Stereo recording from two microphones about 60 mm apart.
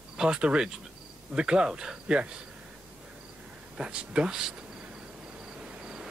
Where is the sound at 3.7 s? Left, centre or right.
Centre.